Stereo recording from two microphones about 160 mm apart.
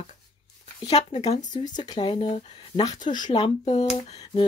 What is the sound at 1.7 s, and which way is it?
Speech, 30° left (ahead or behind).